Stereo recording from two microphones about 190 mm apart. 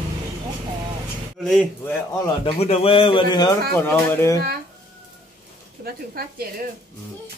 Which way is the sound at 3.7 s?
10° left (ahead or behind).